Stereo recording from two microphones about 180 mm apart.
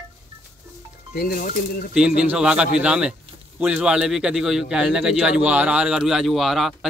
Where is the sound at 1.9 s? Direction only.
5° right (ahead or behind).